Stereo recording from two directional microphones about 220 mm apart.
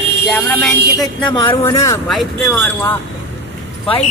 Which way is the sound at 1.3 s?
25° left (ahead or behind).